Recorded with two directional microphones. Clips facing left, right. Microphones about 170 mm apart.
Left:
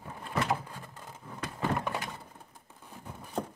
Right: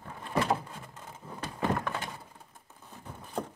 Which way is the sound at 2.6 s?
10° left (ahead or behind).